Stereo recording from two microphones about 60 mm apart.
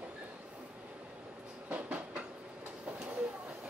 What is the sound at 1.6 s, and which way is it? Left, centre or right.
Train, right.